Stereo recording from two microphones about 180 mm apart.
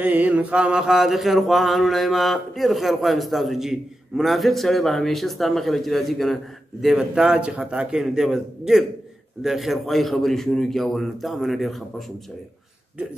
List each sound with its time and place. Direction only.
0.0 s mantra: 10° right (ahead or behind)